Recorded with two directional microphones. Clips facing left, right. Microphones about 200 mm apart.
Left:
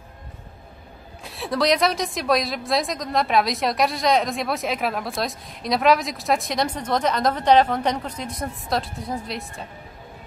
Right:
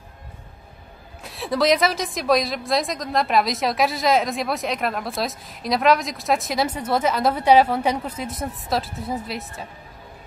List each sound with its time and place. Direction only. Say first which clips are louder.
1.2 s a woman's voice: right 2 dB; centre (ahead or behind)